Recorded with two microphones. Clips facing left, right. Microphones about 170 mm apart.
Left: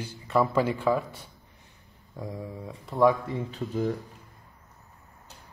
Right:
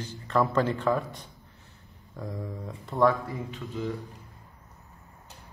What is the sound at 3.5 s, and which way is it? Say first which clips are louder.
Speech: left 6 dB; 40° left (ahead or behind).